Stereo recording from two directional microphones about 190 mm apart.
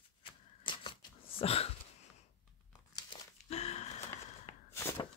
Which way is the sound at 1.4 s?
30° left (ahead or behind).